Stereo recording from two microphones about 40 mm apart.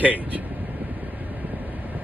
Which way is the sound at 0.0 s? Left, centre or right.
Right.